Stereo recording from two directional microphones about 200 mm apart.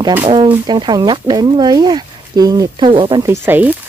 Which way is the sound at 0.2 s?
25° right (ahead or behind).